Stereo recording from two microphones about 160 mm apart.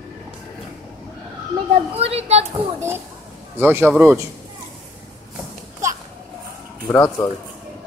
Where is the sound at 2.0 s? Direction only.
40° right (ahead or behind).